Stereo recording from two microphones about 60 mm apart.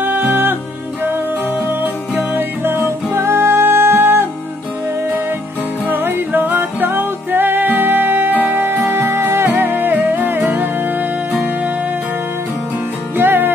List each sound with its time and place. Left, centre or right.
0.0 s music: right
1.7 s music: right
5.9 s music: right
13.2 s music: right